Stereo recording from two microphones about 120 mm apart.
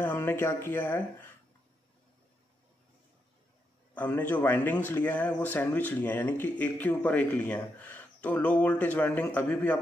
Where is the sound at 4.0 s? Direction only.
15° left (ahead or behind).